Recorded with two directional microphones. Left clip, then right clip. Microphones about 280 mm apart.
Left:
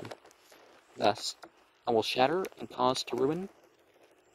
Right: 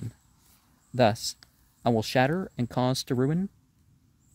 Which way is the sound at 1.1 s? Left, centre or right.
Right.